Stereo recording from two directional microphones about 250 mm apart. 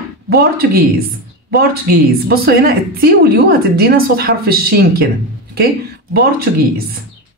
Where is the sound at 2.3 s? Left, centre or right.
Right.